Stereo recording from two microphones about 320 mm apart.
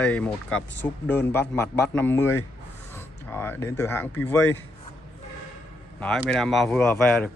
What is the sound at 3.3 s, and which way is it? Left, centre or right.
Speech, centre.